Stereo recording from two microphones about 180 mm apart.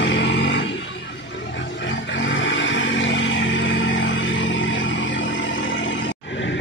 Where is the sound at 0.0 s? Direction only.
90° left.